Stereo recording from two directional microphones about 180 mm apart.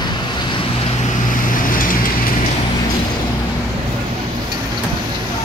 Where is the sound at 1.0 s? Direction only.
50° left (ahead or behind).